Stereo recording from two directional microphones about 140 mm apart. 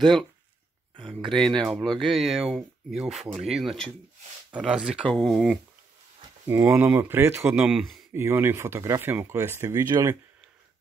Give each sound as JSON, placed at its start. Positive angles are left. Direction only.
{"t": 1.1, "sound": "speech", "side_deg": 5}
{"t": 6.4, "sound": "speech", "side_deg": -15}
{"t": 7.6, "sound": "speech", "side_deg": 0}
{"t": 8.1, "sound": "speech", "side_deg": -20}